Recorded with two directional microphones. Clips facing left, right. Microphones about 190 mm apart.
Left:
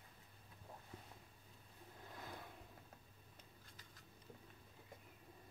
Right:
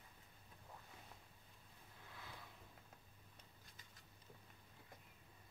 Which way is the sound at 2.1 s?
45° left (ahead or behind).